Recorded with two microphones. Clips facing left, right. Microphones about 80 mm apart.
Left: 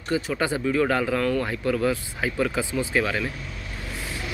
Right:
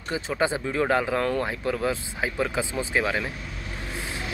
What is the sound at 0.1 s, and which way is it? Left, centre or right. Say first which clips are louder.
Speech: left 1 dB; right.